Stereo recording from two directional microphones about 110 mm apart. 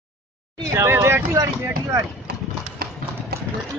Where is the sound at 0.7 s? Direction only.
25° right (ahead or behind).